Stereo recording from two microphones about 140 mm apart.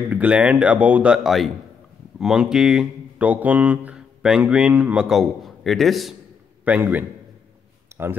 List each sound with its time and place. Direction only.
0.1 s speech: 10° right (ahead or behind)
6.6 s a man's voice: 10° right (ahead or behind)
7.9 s a sound: 20° right (ahead or behind)